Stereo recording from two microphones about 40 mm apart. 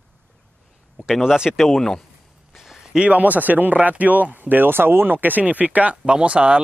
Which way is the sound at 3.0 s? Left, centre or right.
Right.